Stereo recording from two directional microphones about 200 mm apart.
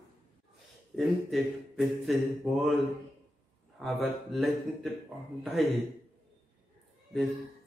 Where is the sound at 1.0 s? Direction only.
Centre (ahead or behind).